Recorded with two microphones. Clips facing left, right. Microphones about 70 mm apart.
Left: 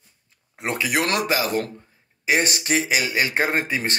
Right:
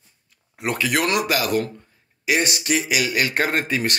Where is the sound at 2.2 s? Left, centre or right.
Left; by 3.9 s centre.